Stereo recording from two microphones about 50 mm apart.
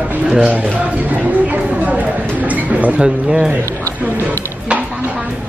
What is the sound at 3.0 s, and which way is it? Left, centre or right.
Speech, centre.